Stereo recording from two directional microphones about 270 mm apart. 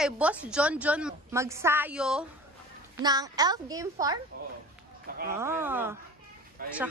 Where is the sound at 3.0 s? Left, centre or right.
Centre.